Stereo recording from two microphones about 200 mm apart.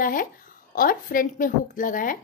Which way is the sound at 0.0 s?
45° left (ahead or behind).